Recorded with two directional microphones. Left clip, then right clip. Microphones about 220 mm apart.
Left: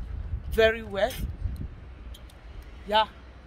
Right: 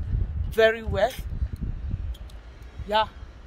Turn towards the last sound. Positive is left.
turn(degrees=-20)  # may be behind; listen again after turning